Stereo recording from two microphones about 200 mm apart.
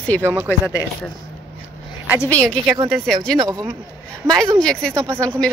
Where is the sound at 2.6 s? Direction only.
20° right (ahead or behind).